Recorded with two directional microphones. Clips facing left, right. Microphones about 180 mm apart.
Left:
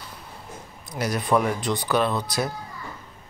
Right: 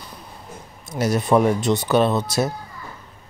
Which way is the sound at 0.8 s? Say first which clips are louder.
Right 5 dB; 25° right (ahead or behind).